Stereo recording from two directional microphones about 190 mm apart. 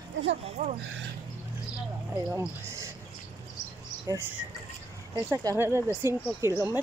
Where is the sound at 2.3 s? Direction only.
15° right (ahead or behind).